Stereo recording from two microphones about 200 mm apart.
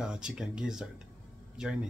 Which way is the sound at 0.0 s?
5° right (ahead or behind).